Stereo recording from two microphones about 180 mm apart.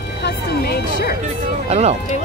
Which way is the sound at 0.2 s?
60° left (ahead or behind).